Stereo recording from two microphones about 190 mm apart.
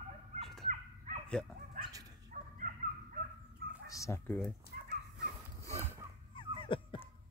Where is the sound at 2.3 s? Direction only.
45° right (ahead or behind).